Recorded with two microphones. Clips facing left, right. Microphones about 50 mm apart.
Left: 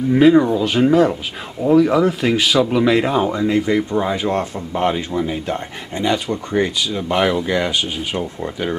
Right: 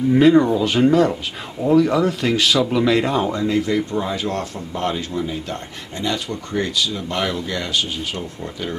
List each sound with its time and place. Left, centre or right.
0.1 s speech: centre